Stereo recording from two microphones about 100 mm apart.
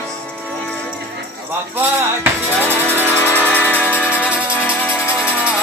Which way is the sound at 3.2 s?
15° left (ahead or behind).